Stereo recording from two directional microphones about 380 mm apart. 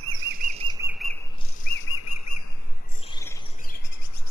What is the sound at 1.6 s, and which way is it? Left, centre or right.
Bird, left.